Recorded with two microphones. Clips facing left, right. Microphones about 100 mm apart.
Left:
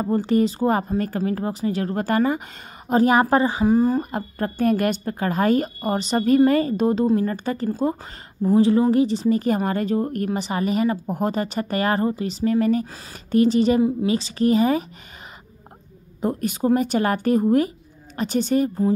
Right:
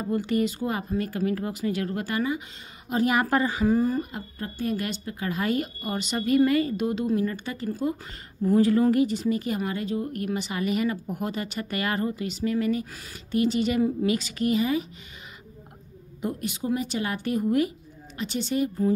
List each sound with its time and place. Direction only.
0.0 s a woman's voice: 35° left (ahead or behind)
4.0 s a woman's voice: 55° left (ahead or behind)
16.2 s speech: 45° left (ahead or behind)